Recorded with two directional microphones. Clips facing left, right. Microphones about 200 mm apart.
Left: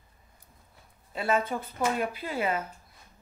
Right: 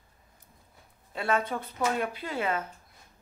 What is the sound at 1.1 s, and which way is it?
A woman's voice, 5° left (ahead or behind).